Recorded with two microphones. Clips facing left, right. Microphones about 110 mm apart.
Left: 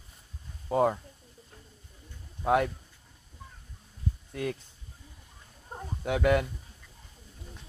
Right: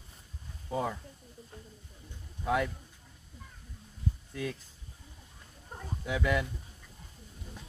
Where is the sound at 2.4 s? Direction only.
65° left (ahead or behind).